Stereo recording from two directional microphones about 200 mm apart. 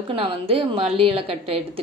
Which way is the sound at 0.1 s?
30° right (ahead or behind).